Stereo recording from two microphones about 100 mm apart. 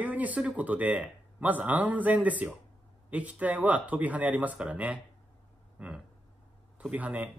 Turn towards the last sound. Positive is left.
turn(degrees=-15)  # may be behind; listen again after turning